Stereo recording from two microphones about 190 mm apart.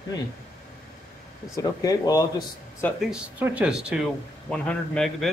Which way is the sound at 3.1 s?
5° right (ahead or behind).